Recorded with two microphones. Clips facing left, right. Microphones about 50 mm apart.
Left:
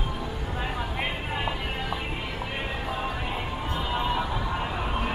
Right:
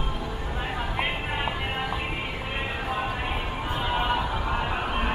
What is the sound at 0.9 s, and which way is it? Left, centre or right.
Music, centre.